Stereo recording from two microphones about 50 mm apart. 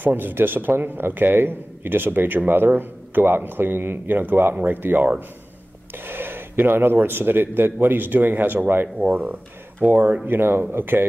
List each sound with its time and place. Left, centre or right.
0.0 s a man's voice: right
8.8 s speech: right
9.8 s a man's voice: right